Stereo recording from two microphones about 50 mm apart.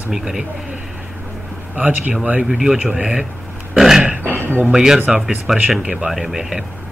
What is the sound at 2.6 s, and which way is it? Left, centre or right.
Speech, centre.